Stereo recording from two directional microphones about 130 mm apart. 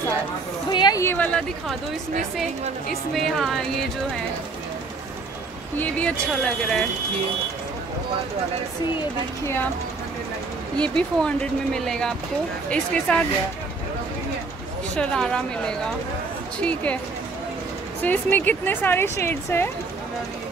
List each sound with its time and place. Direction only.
0.7 s a sound: 35° left (ahead or behind)
1.0 s a sound: 10° left (ahead or behind)
2.9 s speech: 5° left (ahead or behind)
5.8 s speech: 10° left (ahead or behind)
10.8 s speech: 10° left (ahead or behind)
15.0 s speech: 5° left (ahead or behind)
18.0 s speech: 15° left (ahead or behind)